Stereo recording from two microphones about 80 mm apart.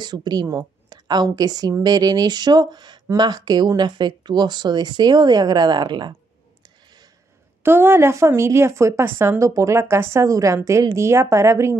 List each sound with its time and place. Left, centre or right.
0.0 s a woman's voice: right
6.6 s a sound: right
7.6 s speech: right
9.4 s speech: right
10.2 s a woman's voice: right